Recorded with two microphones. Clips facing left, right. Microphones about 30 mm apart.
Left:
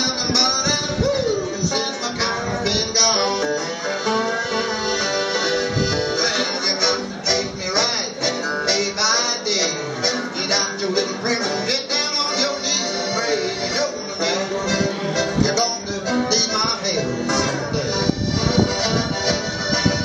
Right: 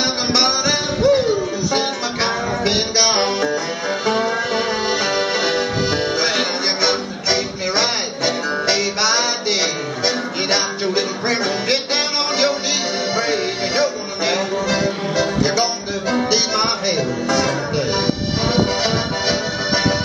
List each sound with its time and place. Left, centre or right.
0.3 s music: right
4.0 s accordion: centre
6.2 s music: centre
13.1 s music: centre
18.8 s accordion: centre